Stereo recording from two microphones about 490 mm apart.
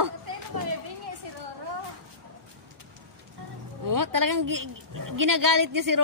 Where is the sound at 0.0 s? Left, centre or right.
Right.